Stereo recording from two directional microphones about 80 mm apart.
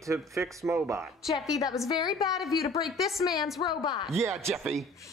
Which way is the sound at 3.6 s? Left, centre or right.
Left.